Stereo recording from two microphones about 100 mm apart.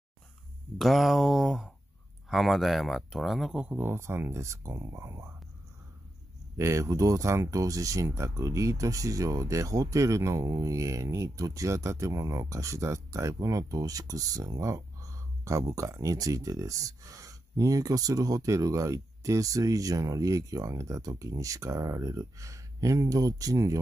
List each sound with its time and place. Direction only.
0.7 s speech: centre (ahead or behind)
3.7 s speech: 20° right (ahead or behind)
6.5 s speech: 30° right (ahead or behind)